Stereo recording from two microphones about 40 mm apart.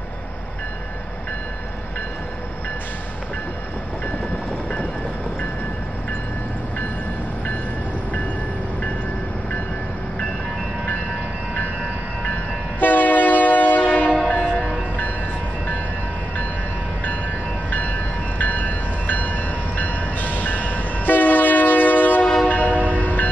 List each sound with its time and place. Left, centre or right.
12.8 s train: left
13.8 s train horn: left
17.6 s train: left
22.5 s train horn: left